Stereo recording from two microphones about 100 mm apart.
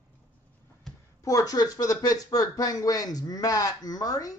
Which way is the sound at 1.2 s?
35° left (ahead or behind).